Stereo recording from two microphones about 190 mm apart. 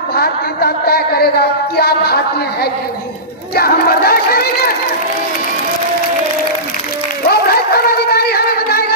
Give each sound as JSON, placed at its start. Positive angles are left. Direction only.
{"t": 0.1, "sound": "speech", "side_deg": 55}
{"t": 3.5, "sound": "speech", "side_deg": 55}
{"t": 7.2, "sound": "a sound", "side_deg": 55}